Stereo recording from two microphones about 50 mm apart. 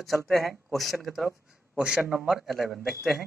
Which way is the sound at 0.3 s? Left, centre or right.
Centre.